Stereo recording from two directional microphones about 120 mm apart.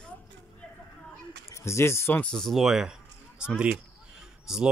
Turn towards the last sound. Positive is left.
turn(degrees=-5)  # may be behind; listen again after turning